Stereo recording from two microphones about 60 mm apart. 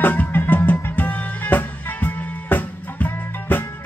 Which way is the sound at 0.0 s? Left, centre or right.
Left.